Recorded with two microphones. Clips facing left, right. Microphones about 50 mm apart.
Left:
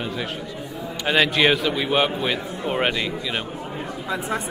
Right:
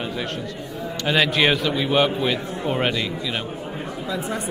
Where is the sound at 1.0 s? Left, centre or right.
Centre.